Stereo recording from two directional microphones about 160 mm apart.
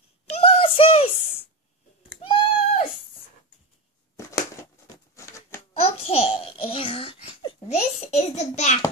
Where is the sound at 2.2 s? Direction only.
35° left (ahead or behind).